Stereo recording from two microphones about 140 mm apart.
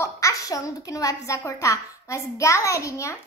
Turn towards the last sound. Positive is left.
turn(degrees=20)  # may be behind; listen again after turning